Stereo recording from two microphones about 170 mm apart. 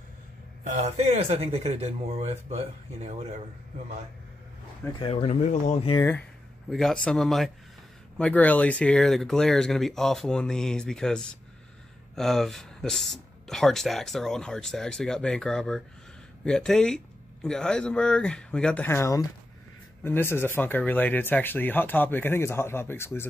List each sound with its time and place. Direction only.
0.7 s speech: 40° right (ahead or behind)
4.9 s speech: 25° left (ahead or behind)
5.2 s speech: 45° left (ahead or behind)
5.9 s speech: 20° left (ahead or behind)
6.7 s speech: 5° left (ahead or behind)